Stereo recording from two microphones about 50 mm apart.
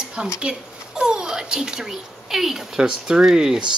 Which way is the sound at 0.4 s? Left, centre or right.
Centre.